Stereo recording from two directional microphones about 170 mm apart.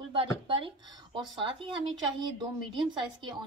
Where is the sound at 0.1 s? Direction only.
30° right (ahead or behind).